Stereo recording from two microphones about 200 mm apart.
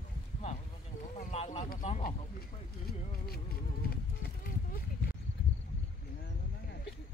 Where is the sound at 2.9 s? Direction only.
50° left (ahead or behind).